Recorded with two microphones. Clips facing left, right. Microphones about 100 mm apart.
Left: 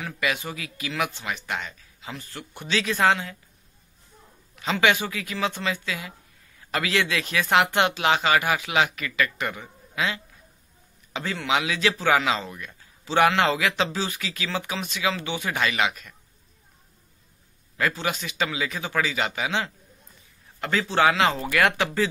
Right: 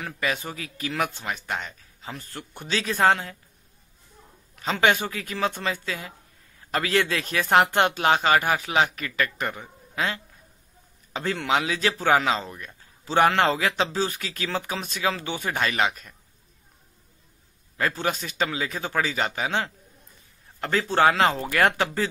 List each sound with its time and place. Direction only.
0.0 s speech: 40° right (ahead or behind)
4.6 s a man's voice: 40° right (ahead or behind)
17.7 s a man's voice: 40° right (ahead or behind)
20.9 s a man's voice: 45° right (ahead or behind)